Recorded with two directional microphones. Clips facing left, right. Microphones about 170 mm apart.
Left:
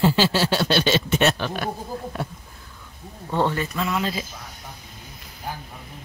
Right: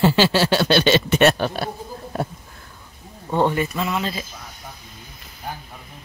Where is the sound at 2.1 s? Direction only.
40° right (ahead or behind).